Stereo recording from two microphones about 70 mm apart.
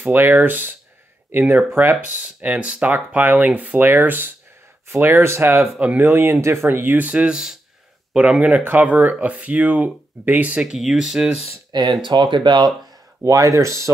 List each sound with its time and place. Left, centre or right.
0.0 s speech: right
2.1 s speech: centre
6.4 s speech: right
7.1 s speech: centre
10.6 s speech: centre
11.7 s speech: right
13.2 s speech: right